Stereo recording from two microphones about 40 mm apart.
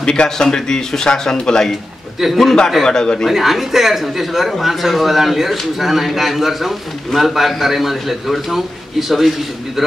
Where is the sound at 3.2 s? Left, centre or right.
Centre.